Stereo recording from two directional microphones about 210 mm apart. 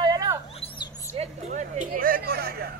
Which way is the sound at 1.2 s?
35° right (ahead or behind).